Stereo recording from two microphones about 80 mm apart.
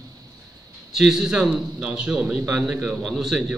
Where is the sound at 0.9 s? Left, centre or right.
Centre.